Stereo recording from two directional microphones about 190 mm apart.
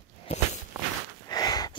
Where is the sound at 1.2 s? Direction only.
20° left (ahead or behind).